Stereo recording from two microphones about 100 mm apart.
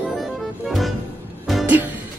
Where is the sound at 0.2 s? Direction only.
Centre (ahead or behind).